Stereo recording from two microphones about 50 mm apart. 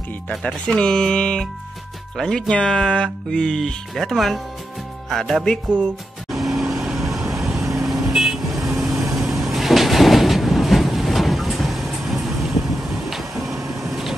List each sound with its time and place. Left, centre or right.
0.5 s speech: centre
2.5 s speech: centre
6.3 s vehicle: centre
9.3 s train: centre
13.1 s music: centre
13.6 s a sound: right
13.8 s vehicle: centre